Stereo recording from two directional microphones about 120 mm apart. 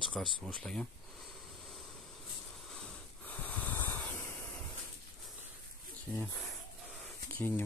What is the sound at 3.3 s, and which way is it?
Snort, 15° left (ahead or behind).